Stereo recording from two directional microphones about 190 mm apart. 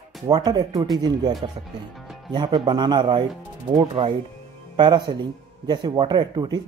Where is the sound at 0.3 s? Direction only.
20° right (ahead or behind).